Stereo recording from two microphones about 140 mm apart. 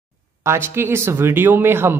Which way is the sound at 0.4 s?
20° right (ahead or behind).